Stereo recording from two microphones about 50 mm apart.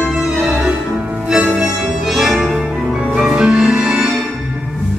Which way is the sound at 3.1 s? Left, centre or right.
Centre.